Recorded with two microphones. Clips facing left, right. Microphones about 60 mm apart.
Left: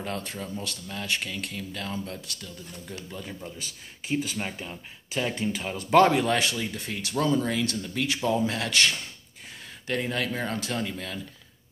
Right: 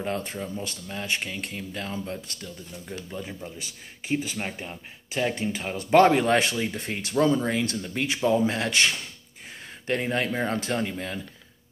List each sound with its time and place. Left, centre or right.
0.0 s speech: right